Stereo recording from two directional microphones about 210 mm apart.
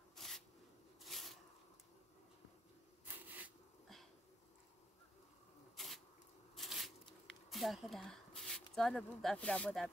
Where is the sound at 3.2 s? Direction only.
10° right (ahead or behind).